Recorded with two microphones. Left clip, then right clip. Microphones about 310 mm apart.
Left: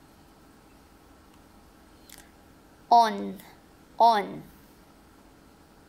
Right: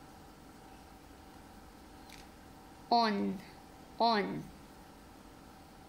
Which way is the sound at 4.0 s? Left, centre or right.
Left.